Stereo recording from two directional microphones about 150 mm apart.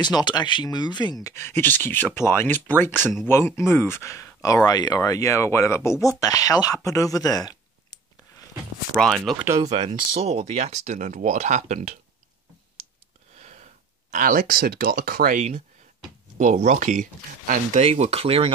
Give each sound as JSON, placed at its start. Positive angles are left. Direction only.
{"t": 0.0, "sound": "speech", "side_deg": 30}
{"t": 8.9, "sound": "speech", "side_deg": 0}
{"t": 9.4, "sound": "speech", "side_deg": -20}
{"t": 9.7, "sound": "speech", "side_deg": -45}
{"t": 14.1, "sound": "speech", "side_deg": -70}
{"t": 16.3, "sound": "speech", "side_deg": -55}
{"t": 17.8, "sound": "speech", "side_deg": -45}